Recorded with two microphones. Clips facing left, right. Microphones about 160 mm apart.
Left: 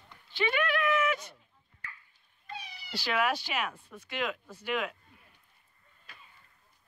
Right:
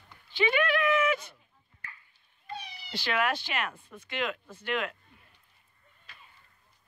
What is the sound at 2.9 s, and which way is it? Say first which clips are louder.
Speech: even; 5° left (ahead or behind).